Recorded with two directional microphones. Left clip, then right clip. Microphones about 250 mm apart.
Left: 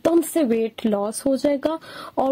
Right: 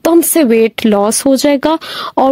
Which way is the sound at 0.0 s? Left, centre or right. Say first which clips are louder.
Right 9 dB; right.